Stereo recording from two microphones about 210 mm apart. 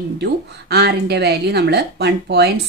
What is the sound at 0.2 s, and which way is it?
A woman's voice, 50° right (ahead or behind).